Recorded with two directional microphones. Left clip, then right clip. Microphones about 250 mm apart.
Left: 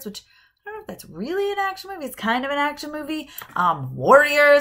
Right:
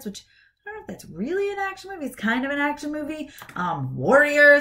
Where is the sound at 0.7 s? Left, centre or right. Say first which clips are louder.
Left 2 dB; left.